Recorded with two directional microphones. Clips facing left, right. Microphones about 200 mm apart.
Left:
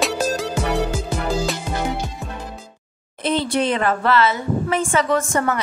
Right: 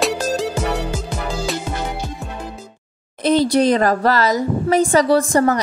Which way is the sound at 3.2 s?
40° right (ahead or behind).